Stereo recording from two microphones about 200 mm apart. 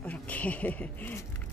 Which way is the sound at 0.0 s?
5° left (ahead or behind).